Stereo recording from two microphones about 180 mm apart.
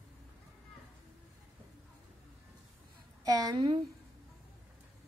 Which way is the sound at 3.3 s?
20° right (ahead or behind).